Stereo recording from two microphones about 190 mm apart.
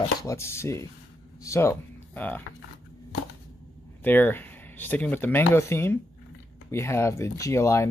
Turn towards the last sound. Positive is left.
turn(degrees=15)  # may be behind; listen again after turning